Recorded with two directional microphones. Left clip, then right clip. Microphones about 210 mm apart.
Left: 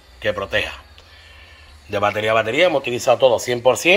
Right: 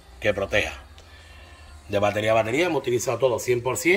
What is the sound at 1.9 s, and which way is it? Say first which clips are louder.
Speech: left 3 dB; 5° right (ahead or behind).